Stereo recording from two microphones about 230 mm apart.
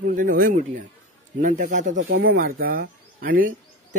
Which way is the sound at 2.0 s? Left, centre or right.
Right.